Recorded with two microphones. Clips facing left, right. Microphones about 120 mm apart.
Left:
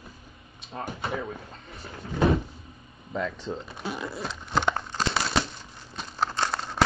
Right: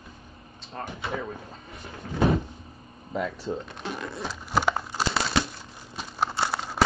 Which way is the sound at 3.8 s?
5° left (ahead or behind).